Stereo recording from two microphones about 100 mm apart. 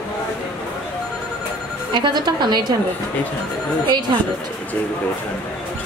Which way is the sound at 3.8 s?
50° right (ahead or behind).